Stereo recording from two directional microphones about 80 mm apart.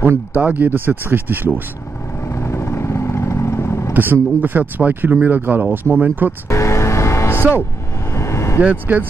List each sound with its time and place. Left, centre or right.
0.4 s speech: centre
2.2 s vehicle: left
3.9 s speech: right
6.5 s vehicle: left
8.5 s speech: centre